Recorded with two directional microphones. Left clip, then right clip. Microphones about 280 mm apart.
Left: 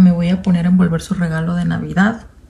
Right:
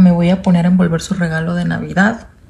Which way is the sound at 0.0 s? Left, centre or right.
Centre.